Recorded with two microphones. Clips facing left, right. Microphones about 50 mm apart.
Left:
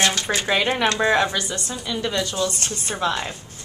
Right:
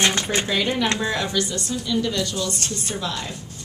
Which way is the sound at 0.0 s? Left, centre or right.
Right.